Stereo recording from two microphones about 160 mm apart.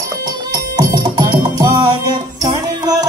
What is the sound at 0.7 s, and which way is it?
Music, 25° right (ahead or behind).